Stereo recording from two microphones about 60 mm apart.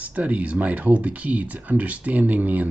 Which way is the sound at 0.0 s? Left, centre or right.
Right.